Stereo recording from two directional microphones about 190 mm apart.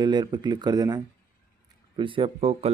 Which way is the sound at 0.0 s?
20° right (ahead or behind).